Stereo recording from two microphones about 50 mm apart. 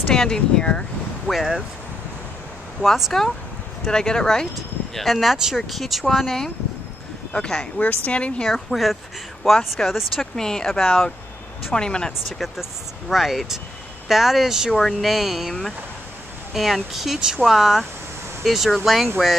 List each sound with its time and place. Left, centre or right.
0.1 s speech: centre
1.2 s speech: centre
2.8 s speech: centre
4.9 s speech: centre
7.3 s speech: centre
7.8 s a woman's voice: left
8.5 s speech: centre
10.3 s speech: centre
11.7 s speech: centre
12.3 s speech: centre
14.7 s speech: centre
16.5 s speech: centre